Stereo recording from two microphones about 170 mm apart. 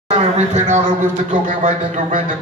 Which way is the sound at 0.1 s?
40° right (ahead or behind).